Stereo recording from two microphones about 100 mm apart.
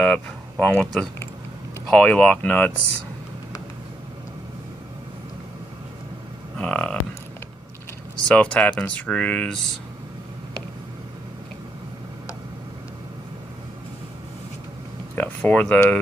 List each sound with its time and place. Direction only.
0.0 s speech: 10° left (ahead or behind)
6.6 s speech: 10° left (ahead or behind)
8.3 s speech: 10° left (ahead or behind)
15.1 s a sound: 15° left (ahead or behind)